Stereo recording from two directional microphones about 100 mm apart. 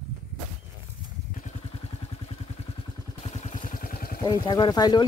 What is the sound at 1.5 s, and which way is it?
Vehicle, 90° left.